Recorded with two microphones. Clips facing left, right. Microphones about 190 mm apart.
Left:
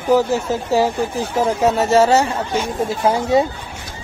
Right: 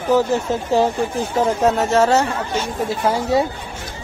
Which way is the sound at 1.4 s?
5° left (ahead or behind).